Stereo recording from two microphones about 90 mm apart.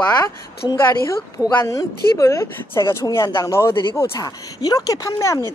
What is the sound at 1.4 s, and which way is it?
Speech, 30° left (ahead or behind).